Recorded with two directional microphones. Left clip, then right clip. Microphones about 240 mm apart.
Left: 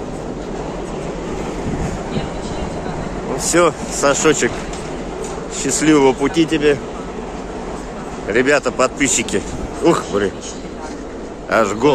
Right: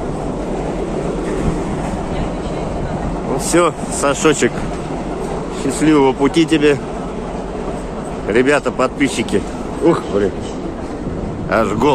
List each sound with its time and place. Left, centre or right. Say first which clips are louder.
3.5 s speech: even; centre
5.8 s speech: even; centre
6.3 s speech: right 2 dB; centre
8.3 s speech: right 1 dB; centre
11.5 s speech: left 1 dB; centre